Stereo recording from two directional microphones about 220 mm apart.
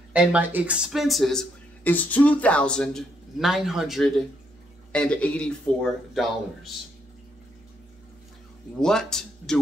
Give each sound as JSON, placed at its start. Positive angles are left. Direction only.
{"t": 0.1, "sound": "speech", "side_deg": -5}
{"t": 8.8, "sound": "speech", "side_deg": 5}